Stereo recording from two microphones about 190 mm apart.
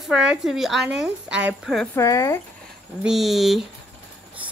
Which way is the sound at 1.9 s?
15° left (ahead or behind).